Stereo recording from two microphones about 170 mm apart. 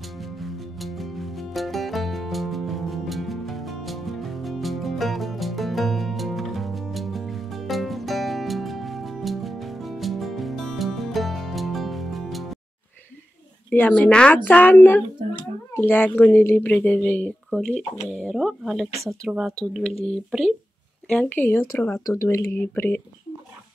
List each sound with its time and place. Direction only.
0.2 s music: centre (ahead or behind)
13.7 s speech: 10° left (ahead or behind)
15.2 s a sound: 40° right (ahead or behind)
15.7 s speech: 10° left (ahead or behind)
19.9 s speech: 35° left (ahead or behind)
21.1 s speech: 10° left (ahead or behind)